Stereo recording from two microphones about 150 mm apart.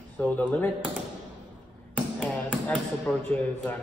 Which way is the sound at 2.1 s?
5° left (ahead or behind).